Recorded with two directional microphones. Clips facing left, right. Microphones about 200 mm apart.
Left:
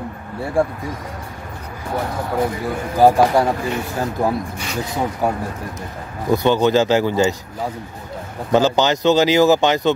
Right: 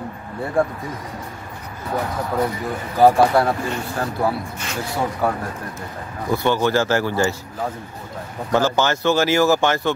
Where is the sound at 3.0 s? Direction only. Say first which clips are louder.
Left 1 dB; 15° left (ahead or behind).